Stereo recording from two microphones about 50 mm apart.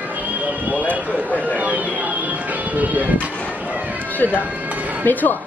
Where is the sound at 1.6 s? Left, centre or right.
Right.